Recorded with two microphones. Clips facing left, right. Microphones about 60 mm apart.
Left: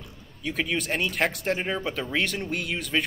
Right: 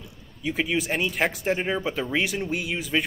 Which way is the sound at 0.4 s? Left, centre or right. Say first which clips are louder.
Right 2 dB; centre.